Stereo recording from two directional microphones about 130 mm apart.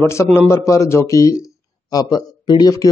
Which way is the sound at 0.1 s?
20° left (ahead or behind).